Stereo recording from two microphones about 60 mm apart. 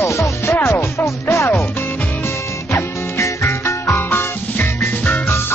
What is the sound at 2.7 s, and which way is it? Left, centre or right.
Music, left.